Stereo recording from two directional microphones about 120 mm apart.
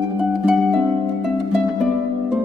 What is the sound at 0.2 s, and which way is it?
Harp, 5° right (ahead or behind).